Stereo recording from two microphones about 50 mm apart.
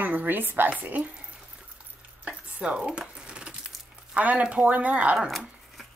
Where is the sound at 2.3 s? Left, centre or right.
Right.